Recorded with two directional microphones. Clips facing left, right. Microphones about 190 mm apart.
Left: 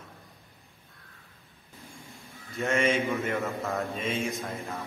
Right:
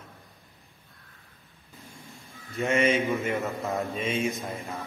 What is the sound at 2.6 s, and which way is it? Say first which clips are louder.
Speech: right 2 dB; 15° right (ahead or behind).